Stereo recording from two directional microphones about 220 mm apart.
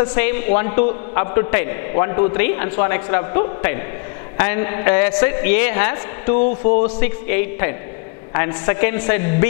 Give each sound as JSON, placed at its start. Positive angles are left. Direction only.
{"t": 0.1, "sound": "a man's voice", "side_deg": 10}
{"t": 0.5, "sound": "a man's voice", "side_deg": 20}